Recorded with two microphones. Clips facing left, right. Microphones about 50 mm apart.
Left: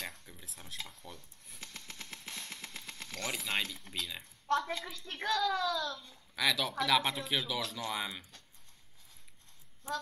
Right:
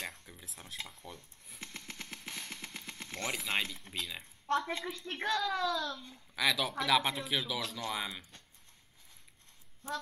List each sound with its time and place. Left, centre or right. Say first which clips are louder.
0.3 s speech: right 1 dB; centre
1.6 s vehicle: right 2 dB; right
3.3 s speech: even; centre
4.5 s a woman's voice: even; right
6.3 s speech: even; centre